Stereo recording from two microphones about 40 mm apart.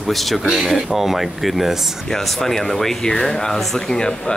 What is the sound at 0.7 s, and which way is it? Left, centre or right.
Speech, centre.